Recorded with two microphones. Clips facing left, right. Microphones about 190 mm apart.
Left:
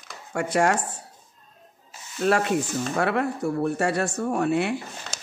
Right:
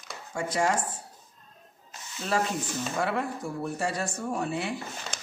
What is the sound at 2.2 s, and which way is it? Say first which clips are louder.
Speech: left 7 dB; 65° left (ahead or behind).